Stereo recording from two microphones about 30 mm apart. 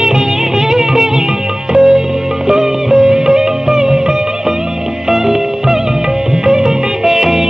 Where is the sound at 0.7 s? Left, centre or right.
Centre.